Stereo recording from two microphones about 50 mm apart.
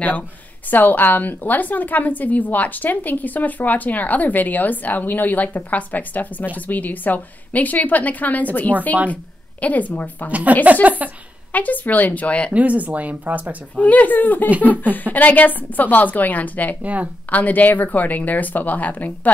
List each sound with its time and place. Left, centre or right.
0.7 s a woman's voice: left
10.6 s speech: right
11.5 s a woman's voice: left
12.5 s speech: right
13.7 s a woman's voice: left
16.8 s speech: right
17.3 s a woman's voice: left